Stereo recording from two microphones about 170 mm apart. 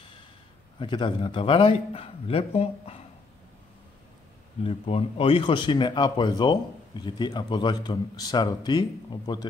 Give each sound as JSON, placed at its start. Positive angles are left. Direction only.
{"t": 0.7, "sound": "a man's voice", "side_deg": 30}
{"t": 4.6, "sound": "speech", "side_deg": 35}